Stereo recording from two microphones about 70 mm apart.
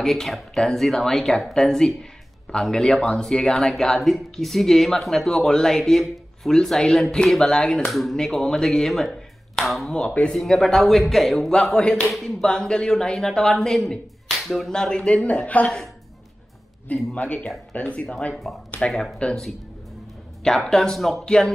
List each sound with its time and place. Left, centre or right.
0.0 s speech: centre
9.9 s speech: centre
11.7 s speech: centre
12.1 s speech: centre
16.9 s speech: centre
18.4 s speech: centre
20.4 s speech: centre